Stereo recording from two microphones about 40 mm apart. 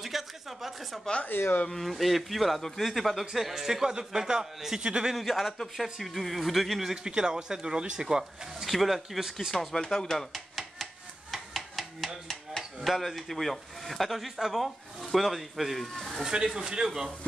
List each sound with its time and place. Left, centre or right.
0.0 s a sound: centre
1.3 s speech: left
1.7 s speech: centre; by 5.1 s right
5.1 s speech: centre
7.1 s speech: right
8.6 s speech: centre
9.8 s a sound: centre
12.3 s hammer: centre
12.9 s speech: centre
16.4 s a man's voice: centre